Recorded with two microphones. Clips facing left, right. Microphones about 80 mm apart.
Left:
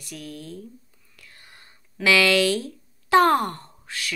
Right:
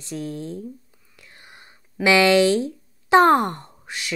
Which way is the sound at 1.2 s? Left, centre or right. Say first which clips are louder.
Right 3 dB; right.